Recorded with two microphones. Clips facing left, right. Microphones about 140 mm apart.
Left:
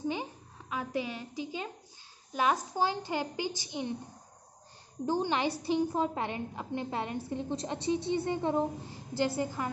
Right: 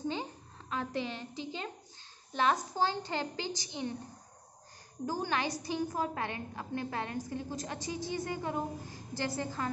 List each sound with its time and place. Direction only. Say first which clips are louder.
0.1 s a sound: left 2 dB; 10° left (ahead or behind)
2.3 s a woman's voice: left 1 dB; 10° left (ahead or behind)
5.0 s a woman's voice: left 4 dB; 20° left (ahead or behind)